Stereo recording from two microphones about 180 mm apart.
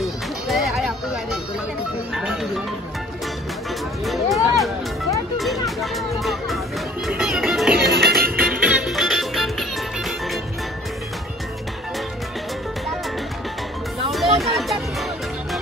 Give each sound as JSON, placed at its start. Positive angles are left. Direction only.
{"t": 0.0, "sound": "music", "side_deg": 0}
{"t": 4.0, "sound": "music", "side_deg": 0}
{"t": 7.7, "sound": "music", "side_deg": -60}
{"t": 8.6, "sound": "music", "side_deg": -5}
{"t": 14.4, "sound": "music", "side_deg": 0}